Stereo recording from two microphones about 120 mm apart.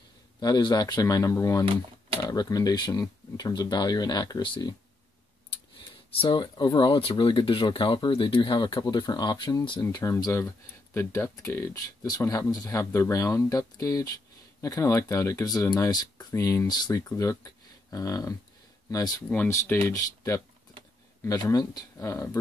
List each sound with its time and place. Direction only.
0.4 s speech: 35° left (ahead or behind)
5.5 s speech: 45° left (ahead or behind); by 19.2 s 30° left (ahead or behind)
19.2 s speech: 15° left (ahead or behind)
19.9 s speech: 25° left (ahead or behind)